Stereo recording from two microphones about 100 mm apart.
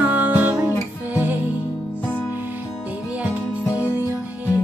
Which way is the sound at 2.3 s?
20° right (ahead or behind).